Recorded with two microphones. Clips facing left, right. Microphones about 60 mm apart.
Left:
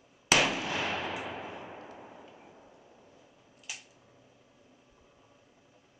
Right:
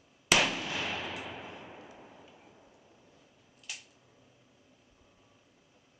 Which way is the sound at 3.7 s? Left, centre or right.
Centre.